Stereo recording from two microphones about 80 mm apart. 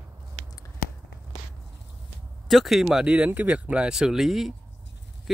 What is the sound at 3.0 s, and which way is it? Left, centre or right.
Speech, centre.